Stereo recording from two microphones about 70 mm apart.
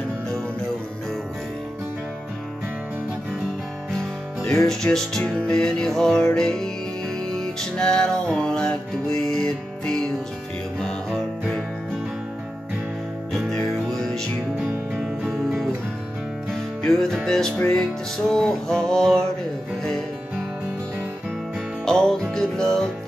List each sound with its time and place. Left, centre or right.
4.6 s music: centre
7.7 s music: centre
13.8 s music: centre
14.6 s music: centre
16.8 s music: centre
21.8 s music: centre